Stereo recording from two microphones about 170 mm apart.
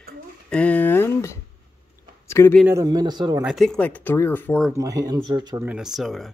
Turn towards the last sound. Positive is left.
turn(degrees=0)  # may be behind; listen again after turning